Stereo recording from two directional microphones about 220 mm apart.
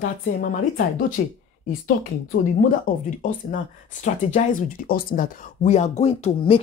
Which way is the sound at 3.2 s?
40° left (ahead or behind).